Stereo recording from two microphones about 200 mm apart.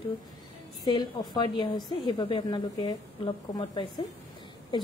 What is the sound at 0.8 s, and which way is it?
A woman's voice, 20° left (ahead or behind).